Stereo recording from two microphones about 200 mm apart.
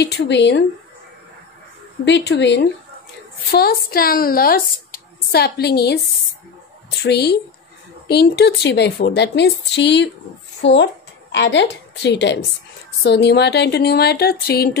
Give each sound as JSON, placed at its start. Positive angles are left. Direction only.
{"t": 0.0, "sound": "a woman's voice", "side_deg": 60}
{"t": 2.0, "sound": "a woman's voice", "side_deg": 60}
{"t": 3.5, "sound": "a woman's voice", "side_deg": 50}
{"t": 7.0, "sound": "a woman's voice", "side_deg": 55}